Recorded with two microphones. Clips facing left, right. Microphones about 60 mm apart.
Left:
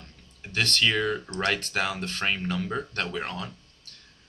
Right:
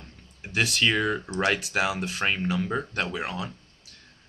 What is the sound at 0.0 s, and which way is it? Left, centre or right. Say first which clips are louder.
Speech: right 2 dB; centre.